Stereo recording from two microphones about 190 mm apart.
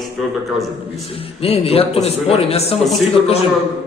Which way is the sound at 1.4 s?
30° left (ahead or behind).